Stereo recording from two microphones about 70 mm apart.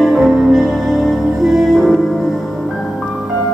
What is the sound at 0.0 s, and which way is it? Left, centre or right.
Music, centre.